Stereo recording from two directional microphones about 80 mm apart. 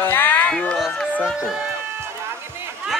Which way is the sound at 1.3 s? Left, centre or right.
Centre.